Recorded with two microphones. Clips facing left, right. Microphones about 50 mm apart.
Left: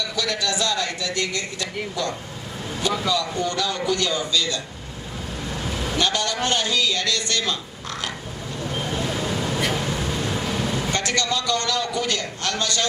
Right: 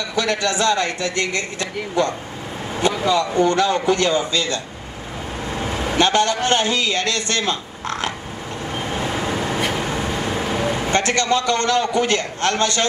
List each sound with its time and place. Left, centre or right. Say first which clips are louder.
0.1 s speech: right 8 dB; right
8.7 s vehicle: right 2 dB; right